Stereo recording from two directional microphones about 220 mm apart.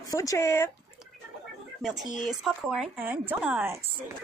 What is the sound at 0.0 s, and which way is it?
Speech, 15° left (ahead or behind).